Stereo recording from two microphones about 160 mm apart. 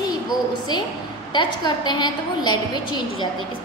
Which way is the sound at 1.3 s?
30° left (ahead or behind).